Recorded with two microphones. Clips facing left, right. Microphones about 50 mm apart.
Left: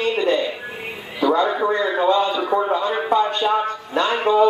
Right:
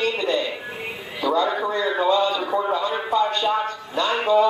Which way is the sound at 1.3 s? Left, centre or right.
Left.